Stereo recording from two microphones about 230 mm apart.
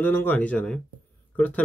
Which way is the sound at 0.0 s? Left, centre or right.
Centre.